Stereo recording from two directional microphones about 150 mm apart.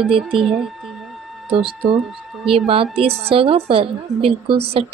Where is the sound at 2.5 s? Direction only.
40° right (ahead or behind).